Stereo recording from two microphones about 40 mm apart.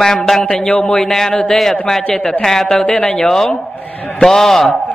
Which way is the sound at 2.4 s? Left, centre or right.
Centre.